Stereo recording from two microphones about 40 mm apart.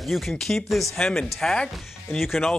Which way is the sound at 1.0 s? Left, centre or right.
Centre.